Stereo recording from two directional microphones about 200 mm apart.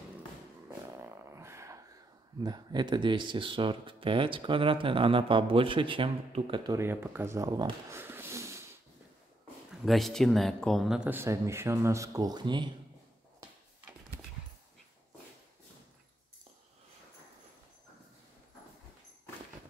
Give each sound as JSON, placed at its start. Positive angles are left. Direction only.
{"t": 0.9, "sound": "a sound", "side_deg": -15}
{"t": 2.4, "sound": "speech", "side_deg": -20}
{"t": 9.7, "sound": "speech", "side_deg": 0}